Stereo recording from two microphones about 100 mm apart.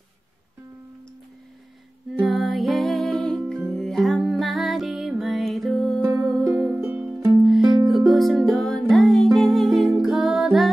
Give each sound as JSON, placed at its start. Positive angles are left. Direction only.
{"t": 2.1, "sound": "music", "side_deg": 0}
{"t": 6.5, "sound": "music", "side_deg": -15}